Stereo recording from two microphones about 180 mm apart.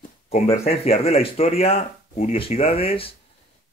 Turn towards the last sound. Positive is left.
turn(degrees=30)  # may be behind; listen again after turning